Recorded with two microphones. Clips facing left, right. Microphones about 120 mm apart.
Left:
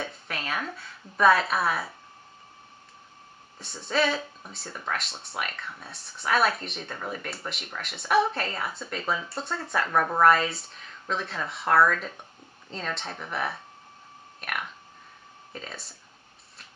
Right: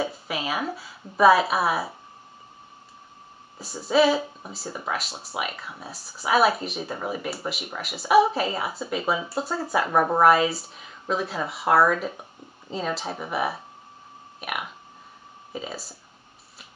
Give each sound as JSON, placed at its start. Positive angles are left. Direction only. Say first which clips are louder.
{"t": 0.0, "sound": "a sound", "louder": "right 6 dB", "side_deg": -5}
{"t": 0.7, "sound": "speech", "louder": "right 5 dB", "side_deg": -5}
{"t": 3.5, "sound": "speech", "louder": "right 7 dB", "side_deg": -5}
{"t": 9.8, "sound": "speech", "louder": "right 3 dB", "side_deg": -20}
{"t": 10.2, "sound": "speech", "louder": "even", "side_deg": -5}